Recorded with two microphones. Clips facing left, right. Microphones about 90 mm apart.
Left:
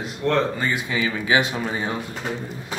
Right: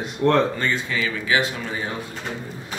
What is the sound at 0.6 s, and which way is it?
Speech, 15° left (ahead or behind).